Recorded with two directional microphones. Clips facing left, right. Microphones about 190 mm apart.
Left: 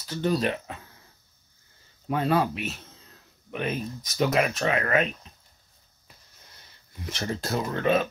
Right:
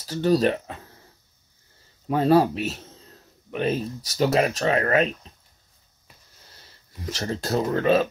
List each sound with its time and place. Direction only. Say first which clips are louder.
0.0 s speech: right 5 dB; 35° right (ahead or behind)
2.0 s speech: right 6 dB; 35° right (ahead or behind)
7.2 s speech: right 4 dB; 35° right (ahead or behind)